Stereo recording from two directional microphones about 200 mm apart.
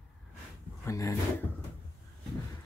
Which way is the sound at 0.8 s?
15° left (ahead or behind).